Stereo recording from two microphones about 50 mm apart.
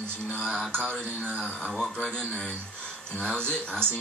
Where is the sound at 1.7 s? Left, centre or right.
Centre.